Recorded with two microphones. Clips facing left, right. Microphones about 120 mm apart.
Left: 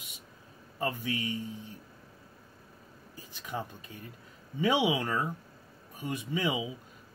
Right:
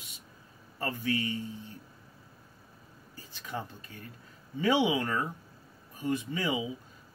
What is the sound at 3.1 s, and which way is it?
Speech, 15° left (ahead or behind).